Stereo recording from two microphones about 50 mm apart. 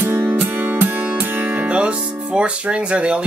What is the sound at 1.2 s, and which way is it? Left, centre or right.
Speech, right.